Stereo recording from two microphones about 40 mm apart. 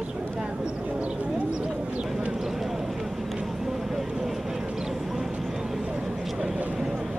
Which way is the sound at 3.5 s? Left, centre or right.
Centre.